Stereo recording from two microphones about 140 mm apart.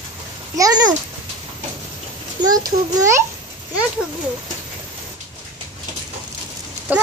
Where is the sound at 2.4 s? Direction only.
25° right (ahead or behind).